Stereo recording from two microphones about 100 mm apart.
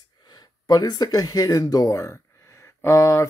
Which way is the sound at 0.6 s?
40° left (ahead or behind).